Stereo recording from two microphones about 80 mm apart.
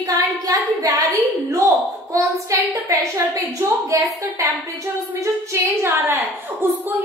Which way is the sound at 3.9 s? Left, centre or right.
Right.